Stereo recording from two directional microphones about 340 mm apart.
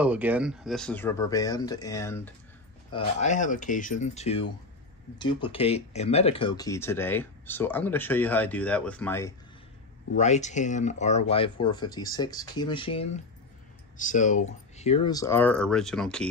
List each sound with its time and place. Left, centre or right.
0.0 s speech: centre
2.9 s speech: left
10.1 s speech: centre